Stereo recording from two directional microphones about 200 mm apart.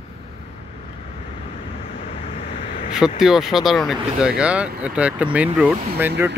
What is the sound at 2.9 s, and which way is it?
Speech, 5° right (ahead or behind).